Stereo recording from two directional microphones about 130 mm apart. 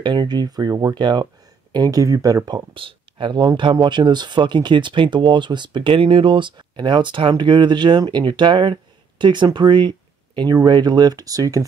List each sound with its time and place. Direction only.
0.0 s speech: 35° right (ahead or behind)